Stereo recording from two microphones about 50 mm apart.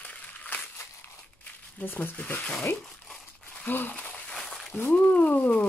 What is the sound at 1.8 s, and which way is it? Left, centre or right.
Speech, left.